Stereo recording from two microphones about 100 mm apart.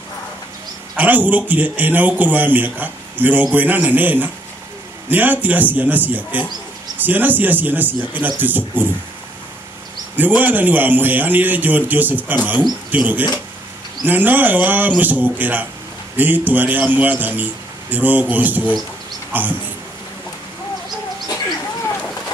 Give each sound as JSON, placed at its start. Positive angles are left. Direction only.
{"t": 0.9, "sound": "a man's voice", "side_deg": -15}
{"t": 10.1, "sound": "a man's voice", "side_deg": -20}